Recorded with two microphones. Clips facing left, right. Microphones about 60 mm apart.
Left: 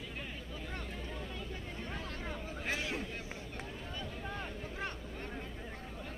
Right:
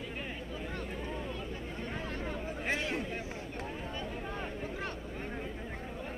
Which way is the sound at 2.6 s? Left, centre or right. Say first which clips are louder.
Right 3 dB; right.